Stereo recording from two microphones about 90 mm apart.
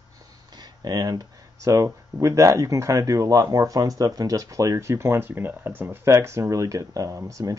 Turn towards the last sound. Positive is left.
turn(degrees=-35)  # may be behind; listen again after turning